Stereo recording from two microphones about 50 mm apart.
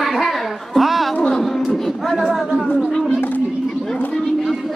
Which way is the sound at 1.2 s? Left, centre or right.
Centre.